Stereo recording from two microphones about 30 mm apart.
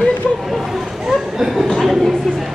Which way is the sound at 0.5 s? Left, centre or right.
Centre.